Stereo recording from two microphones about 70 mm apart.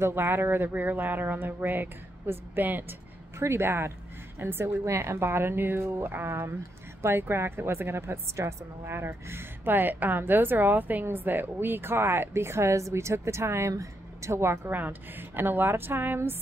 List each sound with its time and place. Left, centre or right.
0.0 s a woman's voice: right
14.7 s speech: right